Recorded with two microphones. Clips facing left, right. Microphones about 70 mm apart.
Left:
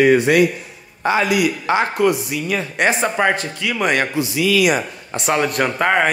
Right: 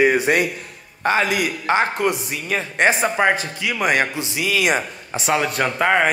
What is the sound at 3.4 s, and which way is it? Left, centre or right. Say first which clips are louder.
Speech: left 2 dB; centre.